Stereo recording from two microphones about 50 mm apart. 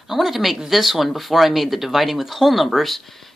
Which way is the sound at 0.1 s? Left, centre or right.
Centre.